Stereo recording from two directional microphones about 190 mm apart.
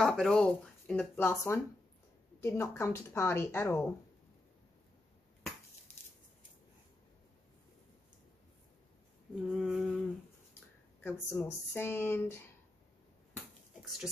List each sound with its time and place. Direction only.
0.0 s speech: 5° left (ahead or behind)
9.3 s a sound: centre (ahead or behind)
11.0 s speech: 10° left (ahead or behind)